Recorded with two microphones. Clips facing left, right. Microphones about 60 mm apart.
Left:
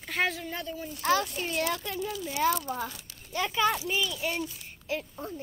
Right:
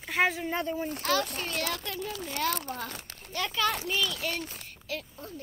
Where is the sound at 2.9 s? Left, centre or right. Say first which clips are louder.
Right 5 dB; right.